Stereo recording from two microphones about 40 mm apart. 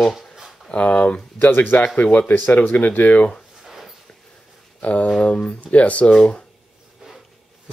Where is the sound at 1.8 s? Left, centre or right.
Left.